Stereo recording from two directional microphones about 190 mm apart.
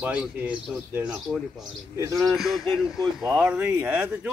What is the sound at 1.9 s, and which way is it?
Speech, 15° right (ahead or behind).